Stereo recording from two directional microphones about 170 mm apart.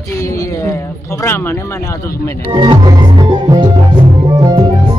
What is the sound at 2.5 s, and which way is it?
Music, 25° right (ahead or behind).